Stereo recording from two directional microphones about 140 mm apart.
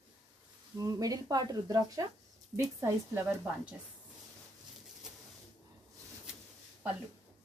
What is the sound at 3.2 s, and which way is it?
Speech, 10° right (ahead or behind).